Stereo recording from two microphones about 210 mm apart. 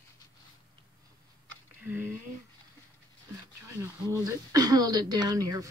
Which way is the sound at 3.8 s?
15° right (ahead or behind).